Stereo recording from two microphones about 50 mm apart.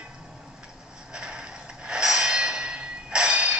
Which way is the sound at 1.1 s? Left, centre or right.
Centre.